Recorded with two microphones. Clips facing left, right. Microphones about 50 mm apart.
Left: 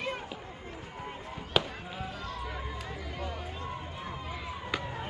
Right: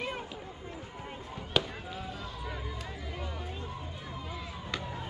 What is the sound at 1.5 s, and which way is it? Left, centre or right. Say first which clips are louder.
Fireworks: left 1 dB; centre.